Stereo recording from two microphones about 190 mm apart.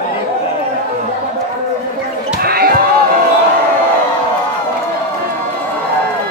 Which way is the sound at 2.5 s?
55° right (ahead or behind).